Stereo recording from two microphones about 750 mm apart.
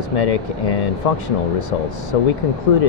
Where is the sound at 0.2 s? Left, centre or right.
Left.